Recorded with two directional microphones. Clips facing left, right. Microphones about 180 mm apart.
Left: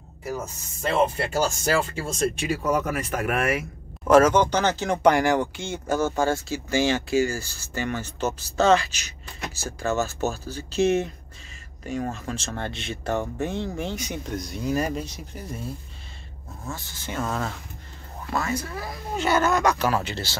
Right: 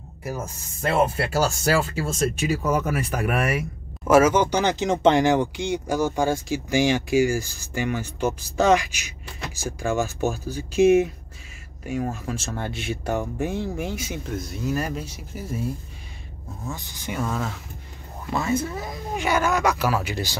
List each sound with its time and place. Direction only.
0.9 s speech: 5° right (ahead or behind)
16.6 s speech: 15° right (ahead or behind)
17.3 s speech: centre (ahead or behind)
18.3 s speech: 25° right (ahead or behind)